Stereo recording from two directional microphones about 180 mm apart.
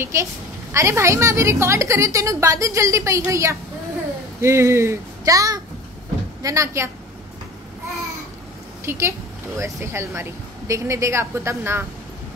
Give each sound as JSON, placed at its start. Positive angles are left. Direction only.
{"t": 0.0, "sound": "a woman's voice", "side_deg": -15}
{"t": 8.8, "sound": "a woman's voice", "side_deg": -15}